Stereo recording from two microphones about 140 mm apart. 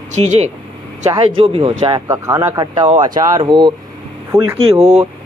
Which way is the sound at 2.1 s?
20° right (ahead or behind).